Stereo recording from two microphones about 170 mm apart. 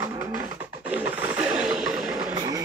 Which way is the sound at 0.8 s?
10° right (ahead or behind).